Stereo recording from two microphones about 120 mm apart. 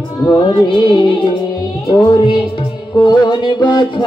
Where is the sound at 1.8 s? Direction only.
35° left (ahead or behind).